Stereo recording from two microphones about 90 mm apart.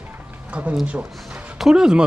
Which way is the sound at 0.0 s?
15° right (ahead or behind).